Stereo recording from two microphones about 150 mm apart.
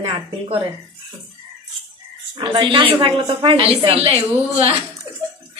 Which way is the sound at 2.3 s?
35° right (ahead or behind).